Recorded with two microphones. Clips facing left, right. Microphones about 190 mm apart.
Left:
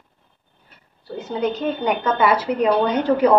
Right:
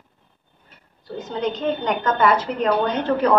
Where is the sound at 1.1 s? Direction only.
10° left (ahead or behind).